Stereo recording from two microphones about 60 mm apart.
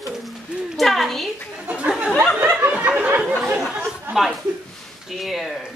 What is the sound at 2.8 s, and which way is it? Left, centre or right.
Chatter, right.